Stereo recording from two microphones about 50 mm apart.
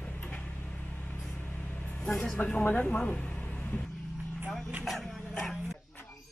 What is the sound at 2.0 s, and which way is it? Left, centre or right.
Speech, centre.